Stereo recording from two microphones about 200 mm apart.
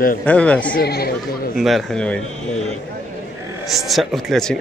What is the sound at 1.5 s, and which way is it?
Speech, centre (ahead or behind).